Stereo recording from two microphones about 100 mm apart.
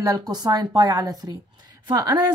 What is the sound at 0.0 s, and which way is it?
A woman's voice, 40° right (ahead or behind).